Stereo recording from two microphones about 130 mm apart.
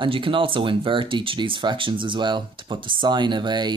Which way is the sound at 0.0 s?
40° right (ahead or behind).